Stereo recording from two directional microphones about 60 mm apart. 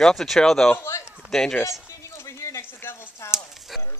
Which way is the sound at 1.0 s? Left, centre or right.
Centre.